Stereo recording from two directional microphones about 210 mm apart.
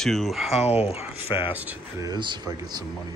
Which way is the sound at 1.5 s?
10° right (ahead or behind).